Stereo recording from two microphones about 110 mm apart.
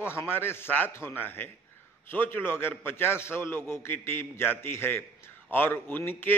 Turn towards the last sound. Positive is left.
turn(degrees=20)  # may be behind; listen again after turning